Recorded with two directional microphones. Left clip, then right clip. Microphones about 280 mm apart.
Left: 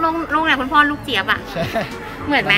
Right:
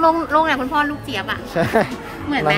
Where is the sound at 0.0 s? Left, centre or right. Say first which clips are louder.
Right 3 dB; right.